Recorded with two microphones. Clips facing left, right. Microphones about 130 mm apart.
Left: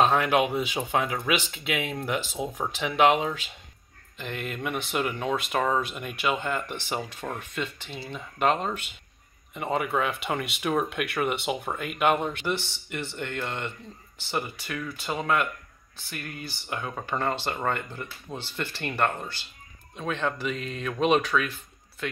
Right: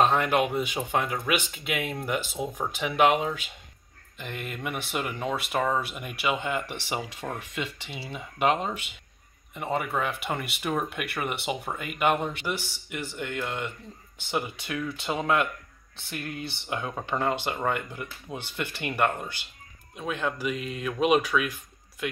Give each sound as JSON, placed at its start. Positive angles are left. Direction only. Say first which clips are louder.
{"t": 0.0, "sound": "speech", "louder": "left 1 dB", "side_deg": 0}
{"t": 2.7, "sound": "speech", "louder": "left 1 dB", "side_deg": -10}